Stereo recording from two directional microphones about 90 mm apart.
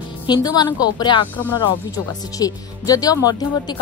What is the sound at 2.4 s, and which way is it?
A woman's voice, 40° left (ahead or behind).